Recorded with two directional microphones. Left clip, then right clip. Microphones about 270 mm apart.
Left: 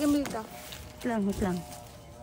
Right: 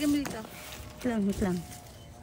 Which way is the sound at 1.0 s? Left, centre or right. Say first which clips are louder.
Even; centre.